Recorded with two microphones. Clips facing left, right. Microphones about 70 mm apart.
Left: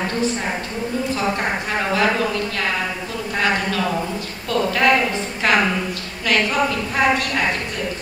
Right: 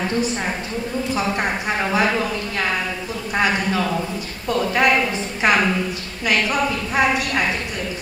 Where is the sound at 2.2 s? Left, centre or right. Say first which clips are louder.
Left 1 dB; centre.